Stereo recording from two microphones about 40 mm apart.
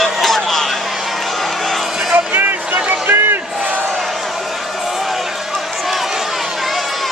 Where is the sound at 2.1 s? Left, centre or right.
Right.